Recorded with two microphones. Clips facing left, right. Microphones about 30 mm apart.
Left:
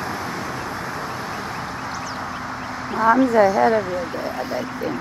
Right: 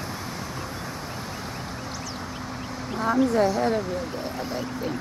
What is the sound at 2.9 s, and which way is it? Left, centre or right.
Speech, centre.